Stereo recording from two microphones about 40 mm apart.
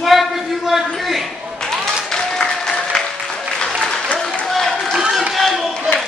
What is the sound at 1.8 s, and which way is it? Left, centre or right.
Applause, centre.